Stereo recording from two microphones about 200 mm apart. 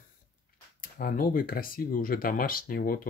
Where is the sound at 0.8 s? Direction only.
45° left (ahead or behind).